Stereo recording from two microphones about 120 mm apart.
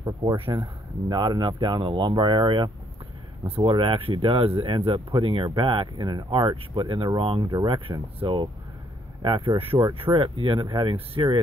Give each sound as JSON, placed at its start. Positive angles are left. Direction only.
{"t": 0.0, "sound": "speech", "side_deg": -35}
{"t": 3.4, "sound": "speech", "side_deg": -55}